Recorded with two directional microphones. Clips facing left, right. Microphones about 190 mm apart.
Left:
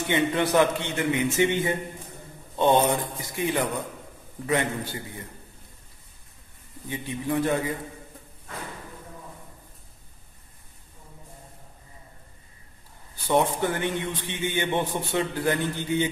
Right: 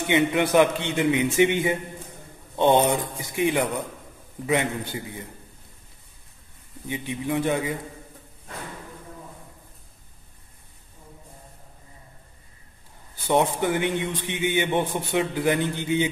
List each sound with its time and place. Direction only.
0.0 s a man's voice: 15° right (ahead or behind)
6.9 s a man's voice: 20° right (ahead or behind)
13.3 s a man's voice: 15° right (ahead or behind)